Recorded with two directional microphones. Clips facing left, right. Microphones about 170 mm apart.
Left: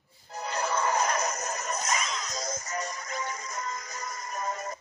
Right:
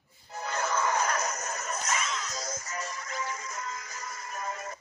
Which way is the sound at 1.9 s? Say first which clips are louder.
Left 1 dB; 40° left (ahead or behind).